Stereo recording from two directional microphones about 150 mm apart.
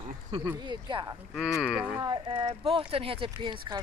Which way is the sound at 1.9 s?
30° right (ahead or behind).